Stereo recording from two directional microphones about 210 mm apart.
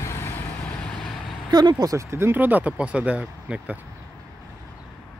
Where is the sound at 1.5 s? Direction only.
20° right (ahead or behind).